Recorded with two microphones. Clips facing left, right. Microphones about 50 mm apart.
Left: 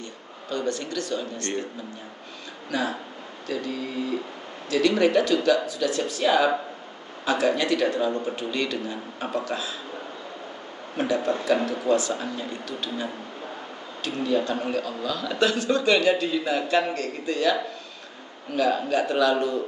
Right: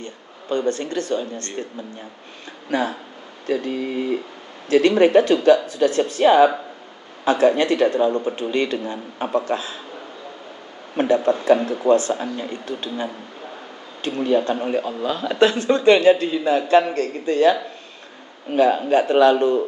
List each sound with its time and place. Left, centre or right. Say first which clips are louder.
0.0 s speech: right 3 dB; right
2.7 s a man's voice: right 5 dB; right
11.0 s a man's voice: right 6 dB; right